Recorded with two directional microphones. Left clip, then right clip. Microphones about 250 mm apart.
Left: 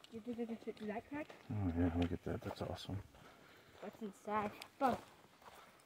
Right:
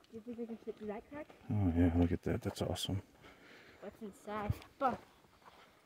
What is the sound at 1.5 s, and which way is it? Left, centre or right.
Speech, right.